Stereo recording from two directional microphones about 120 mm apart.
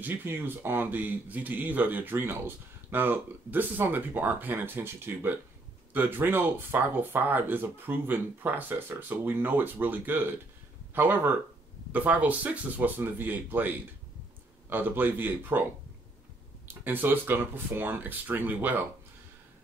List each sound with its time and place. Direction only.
0.0 s a man's voice: 15° right (ahead or behind)
16.6 s a man's voice: 15° right (ahead or behind)